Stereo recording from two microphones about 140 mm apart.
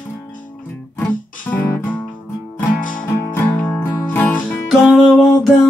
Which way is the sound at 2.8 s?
70° left (ahead or behind).